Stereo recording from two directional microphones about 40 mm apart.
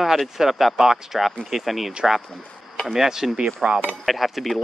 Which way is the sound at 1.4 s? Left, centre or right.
Centre.